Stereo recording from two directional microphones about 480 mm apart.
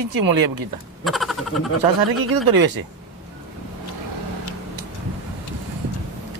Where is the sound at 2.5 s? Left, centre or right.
Right.